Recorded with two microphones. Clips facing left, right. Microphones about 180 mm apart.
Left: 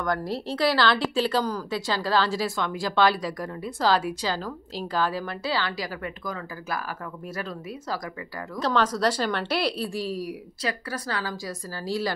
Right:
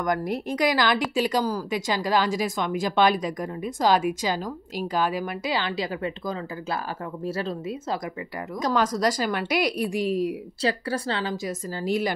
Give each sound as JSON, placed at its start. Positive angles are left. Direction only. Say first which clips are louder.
{"t": 0.0, "sound": "a woman's voice", "louder": "right 2 dB", "side_deg": -15}
{"t": 8.5, "sound": "a woman's voice", "louder": "even", "side_deg": -10}